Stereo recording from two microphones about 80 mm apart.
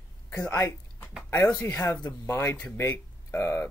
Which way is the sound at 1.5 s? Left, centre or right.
Left.